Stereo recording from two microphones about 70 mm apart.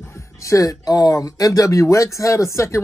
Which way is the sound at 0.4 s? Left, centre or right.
Left.